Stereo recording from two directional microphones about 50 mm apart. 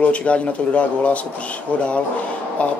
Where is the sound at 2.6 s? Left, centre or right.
Left.